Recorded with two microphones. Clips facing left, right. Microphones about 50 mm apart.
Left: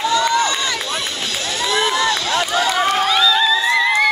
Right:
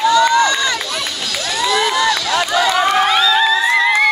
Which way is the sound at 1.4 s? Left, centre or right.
Left.